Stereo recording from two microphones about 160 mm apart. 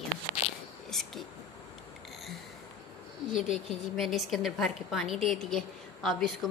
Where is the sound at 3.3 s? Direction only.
Centre (ahead or behind).